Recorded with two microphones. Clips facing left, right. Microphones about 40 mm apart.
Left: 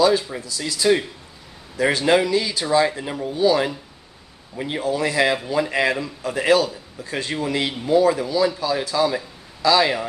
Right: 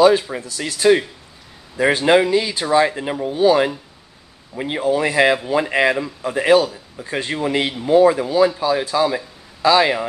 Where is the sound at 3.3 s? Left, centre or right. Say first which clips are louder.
Right 4 dB; right.